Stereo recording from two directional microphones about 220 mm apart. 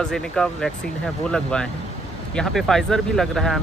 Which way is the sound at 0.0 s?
5° left (ahead or behind).